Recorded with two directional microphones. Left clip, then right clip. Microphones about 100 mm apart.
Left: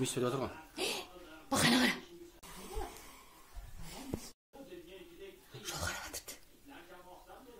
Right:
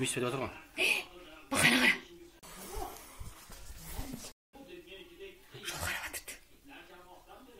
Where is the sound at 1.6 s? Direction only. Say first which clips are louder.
Right 4 dB; 35° left (ahead or behind).